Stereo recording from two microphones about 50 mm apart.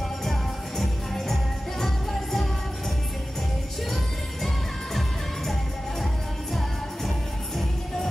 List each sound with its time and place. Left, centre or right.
0.2 s music: centre